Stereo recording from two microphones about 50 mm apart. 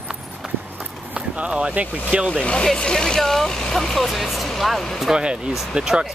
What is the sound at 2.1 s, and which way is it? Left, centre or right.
Speech, right.